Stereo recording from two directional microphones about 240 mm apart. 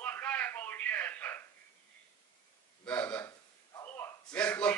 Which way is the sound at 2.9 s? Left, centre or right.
Centre.